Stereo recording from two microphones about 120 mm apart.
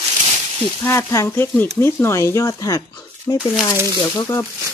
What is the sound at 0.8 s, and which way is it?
Speech, 25° left (ahead or behind).